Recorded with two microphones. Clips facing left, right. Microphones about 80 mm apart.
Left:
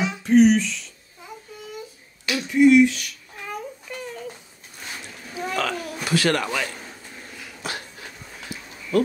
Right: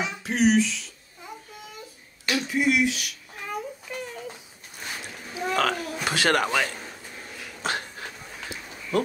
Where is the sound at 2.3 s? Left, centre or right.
Centre.